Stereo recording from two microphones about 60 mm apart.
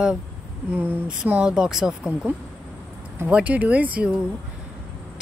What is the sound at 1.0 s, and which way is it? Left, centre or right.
Speech, right.